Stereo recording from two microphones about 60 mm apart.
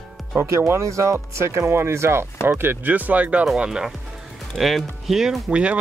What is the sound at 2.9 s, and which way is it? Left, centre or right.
Speech, right.